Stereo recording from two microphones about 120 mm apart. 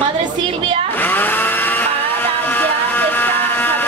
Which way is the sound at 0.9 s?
15° left (ahead or behind).